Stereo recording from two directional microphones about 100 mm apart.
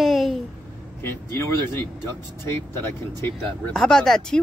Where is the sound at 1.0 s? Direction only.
25° left (ahead or behind).